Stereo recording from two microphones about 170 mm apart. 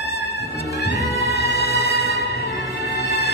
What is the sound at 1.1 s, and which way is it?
Music, 35° left (ahead or behind).